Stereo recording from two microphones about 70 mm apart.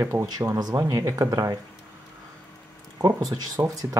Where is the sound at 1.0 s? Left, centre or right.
Right.